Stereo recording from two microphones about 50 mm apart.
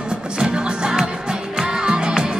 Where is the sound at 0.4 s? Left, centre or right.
Centre.